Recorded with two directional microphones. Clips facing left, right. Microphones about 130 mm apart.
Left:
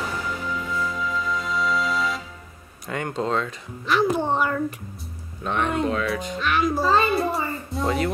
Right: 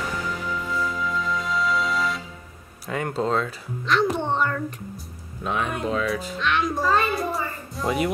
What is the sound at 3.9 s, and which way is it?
Speech, 5° left (ahead or behind).